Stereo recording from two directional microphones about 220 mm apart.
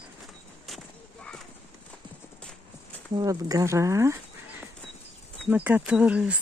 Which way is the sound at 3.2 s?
15° right (ahead or behind).